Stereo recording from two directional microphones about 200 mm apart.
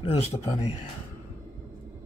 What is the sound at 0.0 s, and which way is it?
Speech, 30° left (ahead or behind).